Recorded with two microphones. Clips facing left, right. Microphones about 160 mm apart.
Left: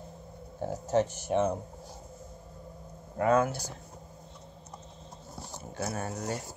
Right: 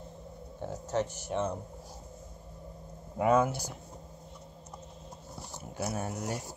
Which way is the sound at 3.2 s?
15° right (ahead or behind).